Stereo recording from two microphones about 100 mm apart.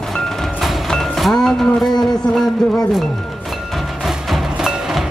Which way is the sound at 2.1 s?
5° left (ahead or behind).